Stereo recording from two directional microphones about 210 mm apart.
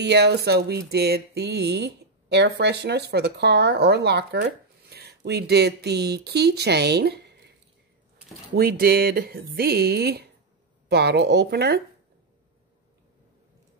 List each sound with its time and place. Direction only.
0.0 s music: 55° right (ahead or behind)
8.5 s music: 45° right (ahead or behind)